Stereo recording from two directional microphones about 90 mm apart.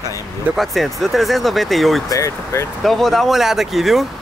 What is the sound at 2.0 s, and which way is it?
Speech, 35° left (ahead or behind).